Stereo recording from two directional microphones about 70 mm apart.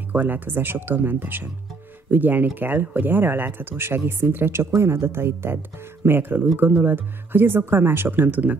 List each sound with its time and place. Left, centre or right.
0.1 s speech: right